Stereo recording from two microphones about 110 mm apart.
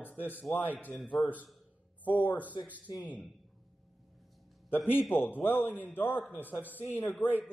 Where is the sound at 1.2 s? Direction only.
15° left (ahead or behind).